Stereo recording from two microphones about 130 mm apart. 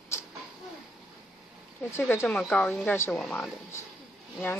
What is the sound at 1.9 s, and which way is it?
Speech, 20° left (ahead or behind).